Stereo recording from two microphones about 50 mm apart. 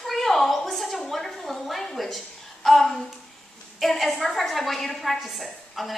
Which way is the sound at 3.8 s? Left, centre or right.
Centre.